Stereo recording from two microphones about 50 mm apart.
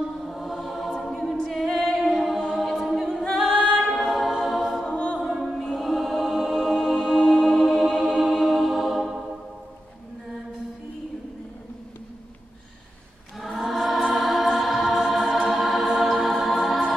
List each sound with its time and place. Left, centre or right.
0.2 s music: centre
1.0 s a capella: centre
2.5 s choir: centre
3.8 s a capella: centre
4.4 s choir: centre
4.8 s choir: centre
5.2 s music: centre
13.7 s music: centre
14.0 s choir: centre
15.5 s music: centre
15.9 s choir: centre